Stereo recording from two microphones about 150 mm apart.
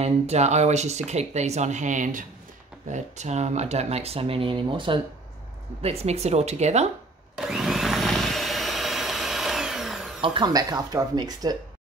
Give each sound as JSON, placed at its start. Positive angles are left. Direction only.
{"t": 0.0, "sound": "speech", "side_deg": -45}
{"t": 7.3, "sound": "vacuum cleaner", "side_deg": -5}
{"t": 10.2, "sound": "speech", "side_deg": -30}